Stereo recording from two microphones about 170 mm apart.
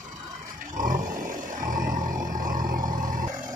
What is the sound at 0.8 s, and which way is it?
Roar, 50° right (ahead or behind).